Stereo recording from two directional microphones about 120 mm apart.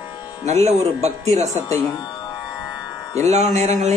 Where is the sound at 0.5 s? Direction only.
65° right (ahead or behind).